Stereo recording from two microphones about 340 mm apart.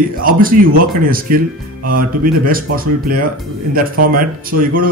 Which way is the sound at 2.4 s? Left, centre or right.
Right.